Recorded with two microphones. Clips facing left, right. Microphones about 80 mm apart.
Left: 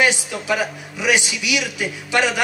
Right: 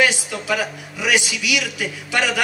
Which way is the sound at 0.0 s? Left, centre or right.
Left.